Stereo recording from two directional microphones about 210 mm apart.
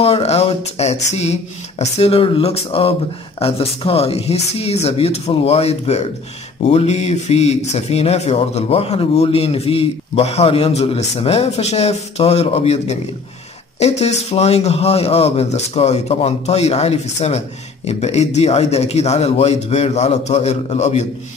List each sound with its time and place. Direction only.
0.0 s a man's voice: 30° left (ahead or behind)